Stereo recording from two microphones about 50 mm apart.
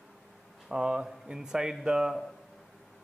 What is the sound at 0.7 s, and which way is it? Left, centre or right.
A man's voice, centre.